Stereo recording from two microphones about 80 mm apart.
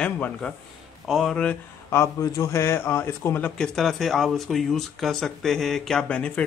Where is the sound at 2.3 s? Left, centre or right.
Left.